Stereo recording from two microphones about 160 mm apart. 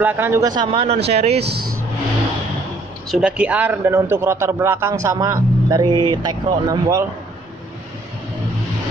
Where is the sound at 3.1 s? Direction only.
5° right (ahead or behind); by 7.0 s 25° right (ahead or behind).